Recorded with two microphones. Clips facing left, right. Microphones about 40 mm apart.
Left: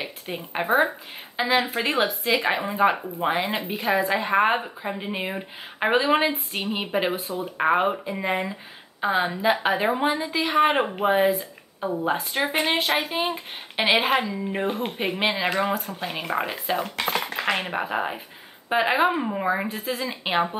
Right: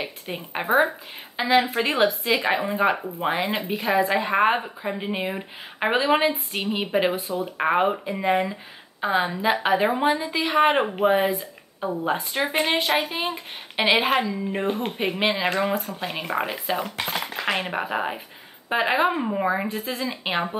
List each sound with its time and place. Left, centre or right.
0.3 s a woman's voice: centre
17.0 s speech: left
17.5 s a woman's voice: centre